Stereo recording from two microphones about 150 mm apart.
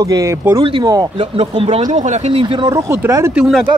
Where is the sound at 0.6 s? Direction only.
35° right (ahead or behind).